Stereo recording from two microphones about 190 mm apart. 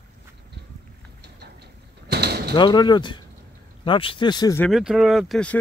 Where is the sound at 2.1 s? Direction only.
60° right (ahead or behind).